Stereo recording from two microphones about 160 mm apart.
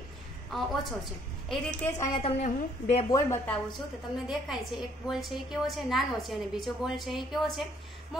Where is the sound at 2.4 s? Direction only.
50° left (ahead or behind).